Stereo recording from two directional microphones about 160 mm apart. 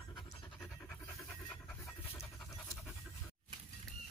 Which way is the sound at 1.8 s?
20° left (ahead or behind).